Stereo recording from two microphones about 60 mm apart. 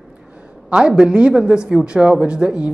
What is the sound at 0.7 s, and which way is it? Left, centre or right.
Speech, centre.